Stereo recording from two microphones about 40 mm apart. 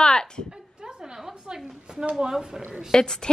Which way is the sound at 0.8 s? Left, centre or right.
Centre.